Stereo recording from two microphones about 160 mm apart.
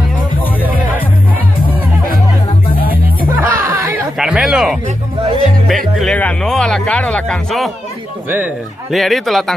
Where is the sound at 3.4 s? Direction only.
15° right (ahead or behind).